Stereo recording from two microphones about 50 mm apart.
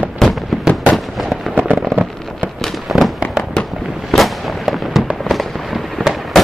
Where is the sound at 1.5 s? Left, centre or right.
Right.